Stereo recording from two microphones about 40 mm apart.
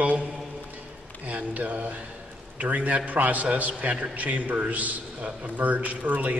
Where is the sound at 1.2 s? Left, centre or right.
Right.